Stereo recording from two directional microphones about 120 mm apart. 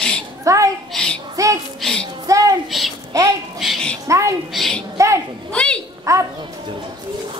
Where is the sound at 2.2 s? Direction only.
30° right (ahead or behind).